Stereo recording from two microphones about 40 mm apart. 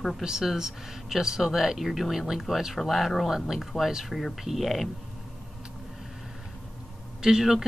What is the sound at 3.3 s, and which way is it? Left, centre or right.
Speech, centre.